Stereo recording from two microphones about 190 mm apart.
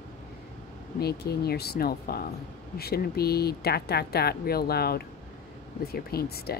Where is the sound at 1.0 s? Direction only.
60° left (ahead or behind).